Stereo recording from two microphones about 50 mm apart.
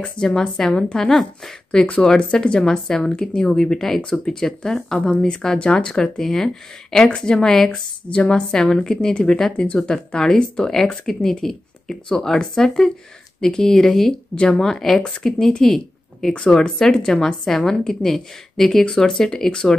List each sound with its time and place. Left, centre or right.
0.0 s speech: centre
1.7 s speech: centre
8.1 s speech: left